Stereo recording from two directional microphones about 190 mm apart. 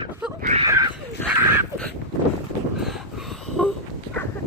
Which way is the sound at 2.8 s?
Centre (ahead or behind).